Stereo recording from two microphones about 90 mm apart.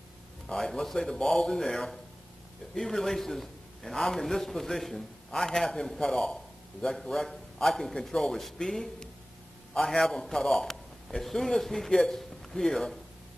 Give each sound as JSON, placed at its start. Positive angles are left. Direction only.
{"t": 0.5, "sound": "a man's voice", "side_deg": 5}